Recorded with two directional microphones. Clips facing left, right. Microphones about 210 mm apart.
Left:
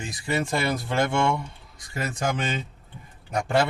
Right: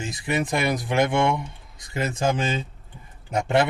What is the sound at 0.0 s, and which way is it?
Speech, 20° right (ahead or behind).